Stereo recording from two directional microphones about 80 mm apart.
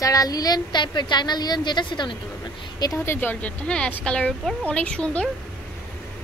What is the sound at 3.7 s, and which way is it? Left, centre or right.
Speech, centre.